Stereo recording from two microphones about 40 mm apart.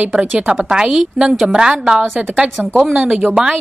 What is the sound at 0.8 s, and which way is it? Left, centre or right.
Speech, centre.